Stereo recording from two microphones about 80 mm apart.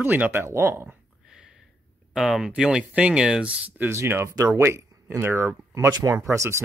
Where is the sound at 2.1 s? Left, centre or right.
Centre.